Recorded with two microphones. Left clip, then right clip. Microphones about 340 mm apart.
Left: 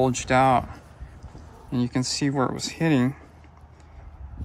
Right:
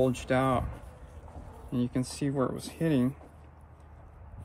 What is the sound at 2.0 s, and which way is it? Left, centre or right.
Speech, left.